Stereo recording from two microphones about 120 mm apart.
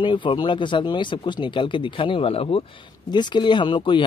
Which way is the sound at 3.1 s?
40° left (ahead or behind).